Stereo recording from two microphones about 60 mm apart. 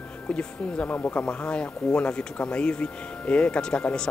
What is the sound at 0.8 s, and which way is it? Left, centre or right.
Speech, left.